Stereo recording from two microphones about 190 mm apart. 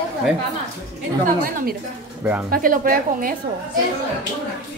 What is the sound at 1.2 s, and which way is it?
Speech, 50° right (ahead or behind).